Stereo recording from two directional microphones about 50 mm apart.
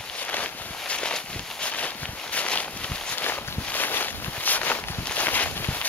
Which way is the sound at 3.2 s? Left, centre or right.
Left.